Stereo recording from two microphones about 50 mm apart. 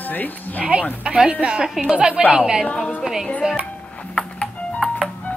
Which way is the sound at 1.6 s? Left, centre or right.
Centre.